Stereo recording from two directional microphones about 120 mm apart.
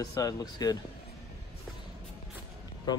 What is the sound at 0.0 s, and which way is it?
Speech, 30° left (ahead or behind).